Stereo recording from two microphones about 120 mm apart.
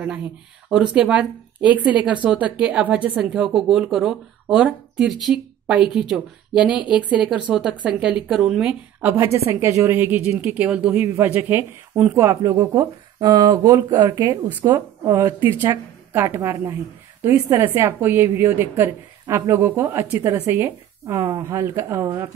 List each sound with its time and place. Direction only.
0.7 s speech: 5° right (ahead or behind); by 15.8 s 30° right (ahead or behind)
16.1 s speech: 20° right (ahead or behind)